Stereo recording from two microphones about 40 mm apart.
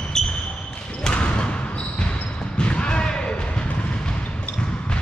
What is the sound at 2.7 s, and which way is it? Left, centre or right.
Basketball bounce, left.